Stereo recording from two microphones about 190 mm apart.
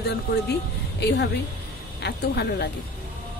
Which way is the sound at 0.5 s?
60° left (ahead or behind).